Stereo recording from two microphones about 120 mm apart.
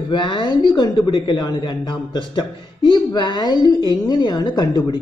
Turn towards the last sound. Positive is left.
turn(degrees=35)  # may be behind; listen again after turning